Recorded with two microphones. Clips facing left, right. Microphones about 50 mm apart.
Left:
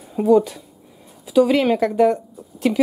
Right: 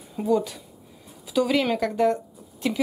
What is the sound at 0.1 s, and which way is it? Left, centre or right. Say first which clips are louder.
Speech: left 8 dB; left.